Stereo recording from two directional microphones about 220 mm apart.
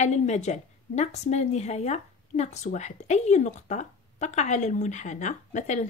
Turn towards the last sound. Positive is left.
turn(degrees=30)  # may be behind; listen again after turning